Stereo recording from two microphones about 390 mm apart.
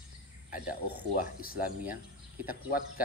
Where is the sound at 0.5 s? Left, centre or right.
Left.